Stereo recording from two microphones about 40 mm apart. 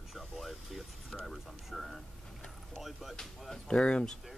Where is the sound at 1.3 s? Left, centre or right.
Centre.